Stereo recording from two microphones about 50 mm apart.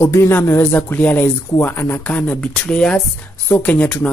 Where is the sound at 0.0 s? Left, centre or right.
Left.